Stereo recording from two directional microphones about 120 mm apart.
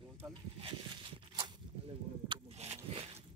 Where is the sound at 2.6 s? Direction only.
65° right (ahead or behind).